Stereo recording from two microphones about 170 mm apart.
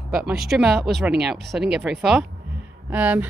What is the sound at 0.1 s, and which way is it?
A woman's voice, 5° right (ahead or behind).